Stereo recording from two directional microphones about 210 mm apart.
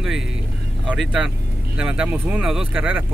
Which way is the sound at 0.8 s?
5° right (ahead or behind).